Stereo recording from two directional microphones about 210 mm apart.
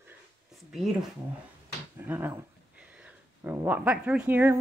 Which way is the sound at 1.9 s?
10° right (ahead or behind).